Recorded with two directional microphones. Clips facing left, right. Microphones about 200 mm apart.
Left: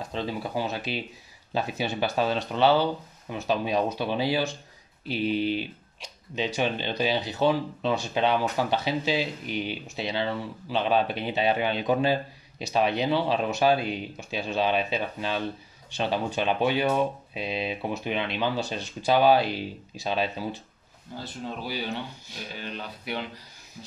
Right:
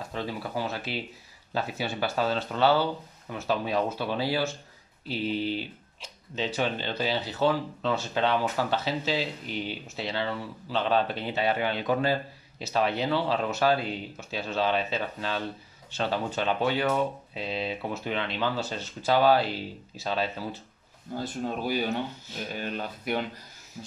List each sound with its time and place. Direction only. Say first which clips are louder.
0.1 s speech: left 2 dB; 20° left (ahead or behind)
21.2 s speech: right 4 dB; 50° right (ahead or behind)